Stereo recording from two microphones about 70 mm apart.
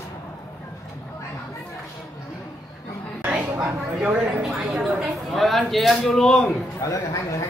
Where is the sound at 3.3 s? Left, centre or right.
Centre.